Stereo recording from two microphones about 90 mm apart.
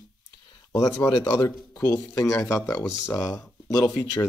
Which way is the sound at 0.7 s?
45° left (ahead or behind).